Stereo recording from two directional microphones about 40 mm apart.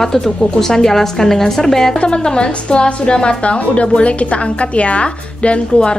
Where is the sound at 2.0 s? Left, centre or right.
Left.